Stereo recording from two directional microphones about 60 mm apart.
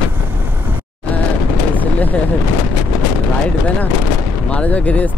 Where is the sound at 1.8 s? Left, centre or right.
Left.